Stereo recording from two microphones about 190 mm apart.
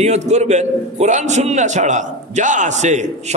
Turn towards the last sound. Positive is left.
turn(degrees=-40)  # may be behind; listen again after turning